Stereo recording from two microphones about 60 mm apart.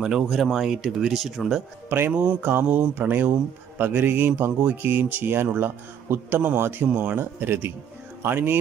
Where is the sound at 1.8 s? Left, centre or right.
Right.